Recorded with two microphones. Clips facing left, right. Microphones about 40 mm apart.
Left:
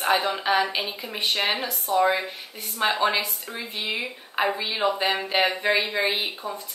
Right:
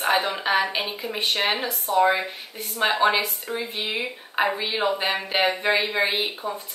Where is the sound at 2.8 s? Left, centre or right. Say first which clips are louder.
Right 2 dB; centre.